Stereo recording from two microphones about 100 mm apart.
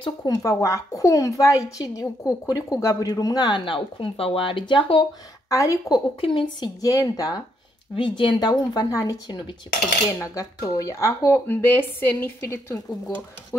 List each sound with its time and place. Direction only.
0.2 s a woman's voice: 40° left (ahead or behind); by 5.0 s 60° left (ahead or behind)
5.5 s a woman's voice: 35° left (ahead or behind)
6.2 s speech: 55° left (ahead or behind); by 7.3 s 40° left (ahead or behind)
7.9 s a woman's voice: 55° left (ahead or behind); by 13.1 s 35° left (ahead or behind)